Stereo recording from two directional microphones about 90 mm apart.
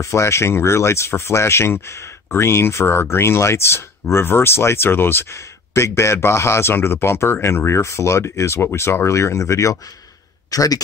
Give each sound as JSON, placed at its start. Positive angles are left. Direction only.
{"t": 0.0, "sound": "speech", "side_deg": 30}